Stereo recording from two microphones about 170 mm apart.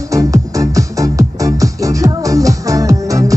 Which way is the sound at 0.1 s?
20° right (ahead or behind).